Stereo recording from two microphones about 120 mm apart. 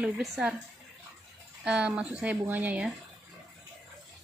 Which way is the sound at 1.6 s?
10° right (ahead or behind).